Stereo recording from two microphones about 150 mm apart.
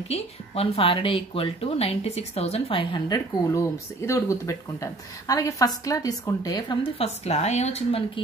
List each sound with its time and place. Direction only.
0.1 s a woman's voice: 40° left (ahead or behind)
3.5 s speech: 20° left (ahead or behind); by 8.0 s 45° left (ahead or behind)